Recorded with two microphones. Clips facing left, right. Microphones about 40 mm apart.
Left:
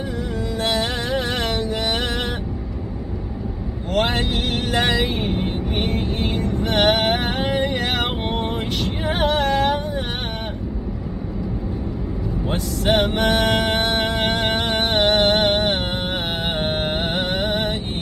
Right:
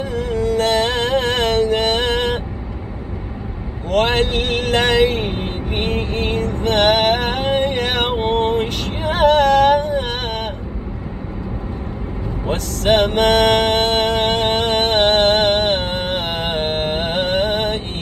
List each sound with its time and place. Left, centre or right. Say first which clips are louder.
0.1 s music: right 7 dB; right
3.9 s vehicle: right 5 dB; right
8.3 s music: right 7 dB; right
12.4 s music: right 4 dB; right